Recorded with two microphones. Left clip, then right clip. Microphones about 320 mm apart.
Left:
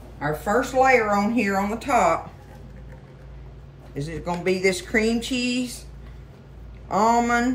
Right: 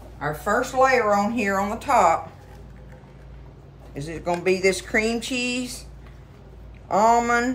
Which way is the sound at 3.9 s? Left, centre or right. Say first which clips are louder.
Right 2 dB; centre.